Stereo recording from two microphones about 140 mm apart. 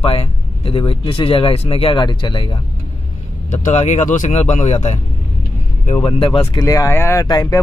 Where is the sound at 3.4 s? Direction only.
60° left (ahead or behind); by 6.4 s 40° left (ahead or behind).